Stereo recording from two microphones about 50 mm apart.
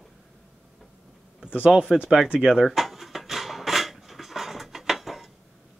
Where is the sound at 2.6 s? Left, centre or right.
Centre.